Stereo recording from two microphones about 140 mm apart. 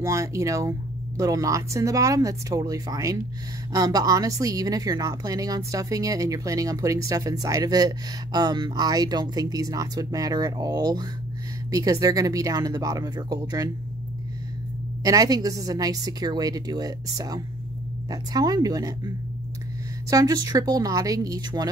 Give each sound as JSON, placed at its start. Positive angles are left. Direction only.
{"t": 0.0, "sound": "speech", "side_deg": -20}
{"t": 15.0, "sound": "speech", "side_deg": -25}
{"t": 20.1, "sound": "speech", "side_deg": -25}